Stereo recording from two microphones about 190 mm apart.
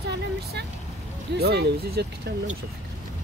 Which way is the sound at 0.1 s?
60° right (ahead or behind).